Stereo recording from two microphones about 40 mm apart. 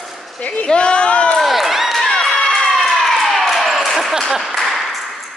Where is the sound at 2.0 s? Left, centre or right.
Centre.